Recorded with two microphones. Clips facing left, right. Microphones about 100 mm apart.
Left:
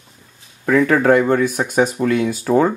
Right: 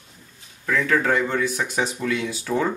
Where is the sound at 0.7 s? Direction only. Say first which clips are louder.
Left 8 dB; 50° left (ahead or behind).